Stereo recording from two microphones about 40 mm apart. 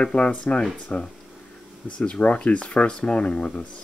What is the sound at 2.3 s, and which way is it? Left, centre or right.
Speech, left.